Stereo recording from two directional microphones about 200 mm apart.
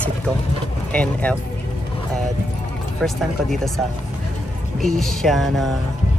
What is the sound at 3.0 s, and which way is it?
Speech, centre (ahead or behind).